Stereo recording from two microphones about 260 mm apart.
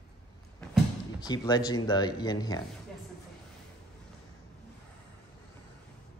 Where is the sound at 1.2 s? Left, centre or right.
Centre.